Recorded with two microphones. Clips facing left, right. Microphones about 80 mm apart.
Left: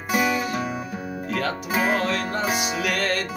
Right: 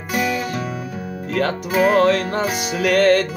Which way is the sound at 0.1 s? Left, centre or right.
Centre.